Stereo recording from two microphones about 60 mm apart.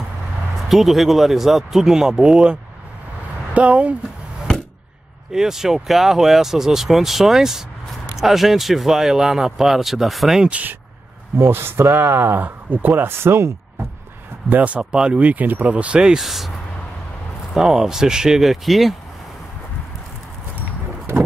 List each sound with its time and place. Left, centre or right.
0.7 s speech: centre; by 3.9 s right
5.3 s speech: centre
11.3 s speech: right
12.4 s speech: right
14.5 s speech: right
14.8 s speech: centre
15.1 s speech: right; by 16.5 s centre
17.6 s speech: centre